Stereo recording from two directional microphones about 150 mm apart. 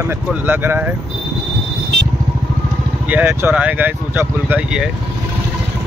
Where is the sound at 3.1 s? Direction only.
15° right (ahead or behind).